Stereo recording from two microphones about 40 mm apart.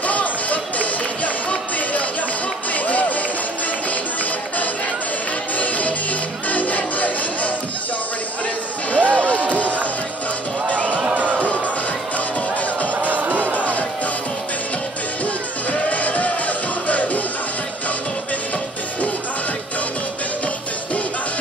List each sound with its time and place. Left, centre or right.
0.0 s music: left
5.6 s music: left
8.9 s a sound: left
11.1 s a sound: right
13.0 s music: right
15.9 s music: left